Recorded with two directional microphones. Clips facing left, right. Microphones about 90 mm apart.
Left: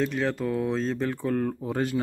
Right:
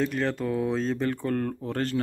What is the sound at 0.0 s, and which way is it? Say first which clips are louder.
Speech: even; centre (ahead or behind).